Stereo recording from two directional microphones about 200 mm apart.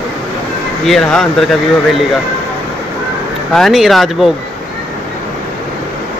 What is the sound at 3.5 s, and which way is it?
Speech, centre (ahead or behind).